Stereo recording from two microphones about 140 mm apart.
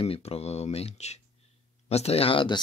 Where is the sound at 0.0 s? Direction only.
45° left (ahead or behind).